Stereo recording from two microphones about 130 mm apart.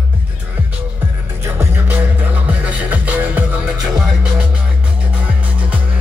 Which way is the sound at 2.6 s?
10° right (ahead or behind).